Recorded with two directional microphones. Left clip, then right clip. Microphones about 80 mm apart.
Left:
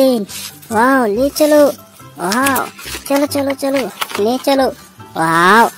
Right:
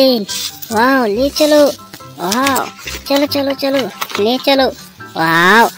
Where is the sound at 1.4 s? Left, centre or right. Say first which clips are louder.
Even; centre.